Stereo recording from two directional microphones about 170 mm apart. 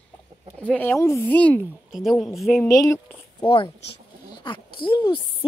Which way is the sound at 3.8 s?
80° left.